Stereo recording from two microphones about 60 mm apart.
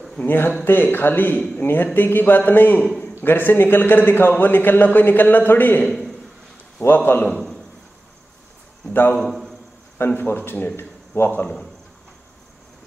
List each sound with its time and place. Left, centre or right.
0.3 s a man's voice: left
6.8 s a man's voice: left
7.2 s a sound: centre
9.1 s a man's voice: centre
9.9 s a man's voice: left
11.2 s a man's voice: left